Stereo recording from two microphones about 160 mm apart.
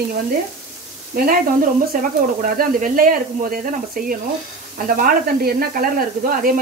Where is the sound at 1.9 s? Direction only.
60° right (ahead or behind).